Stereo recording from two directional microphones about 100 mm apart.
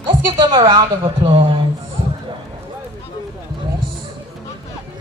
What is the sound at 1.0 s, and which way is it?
Speech, 65° right (ahead or behind).